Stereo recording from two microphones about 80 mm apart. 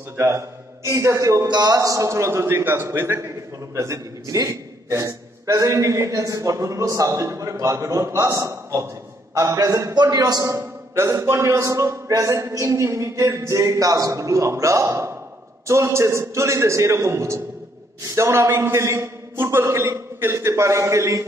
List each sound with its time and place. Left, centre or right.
0.8 s a man's voice: right
1.5 s a man's voice: right
3.7 s a man's voice: right
10.6 s a man's voice: right